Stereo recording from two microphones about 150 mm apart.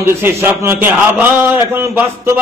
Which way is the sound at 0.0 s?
15° right (ahead or behind).